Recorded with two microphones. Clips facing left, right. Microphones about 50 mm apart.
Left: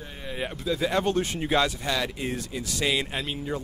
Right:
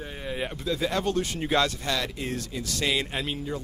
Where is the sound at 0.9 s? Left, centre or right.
Left.